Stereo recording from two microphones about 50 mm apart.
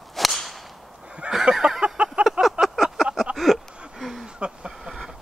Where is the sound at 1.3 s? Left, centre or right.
Centre.